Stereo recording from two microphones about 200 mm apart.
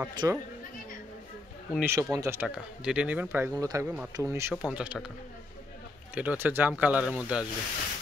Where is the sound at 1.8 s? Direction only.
15° right (ahead or behind).